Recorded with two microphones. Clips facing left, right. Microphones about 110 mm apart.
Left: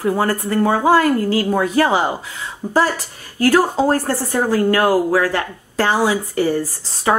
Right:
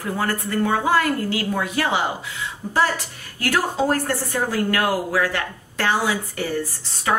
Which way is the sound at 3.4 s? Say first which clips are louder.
Left 7 dB; 40° left (ahead or behind).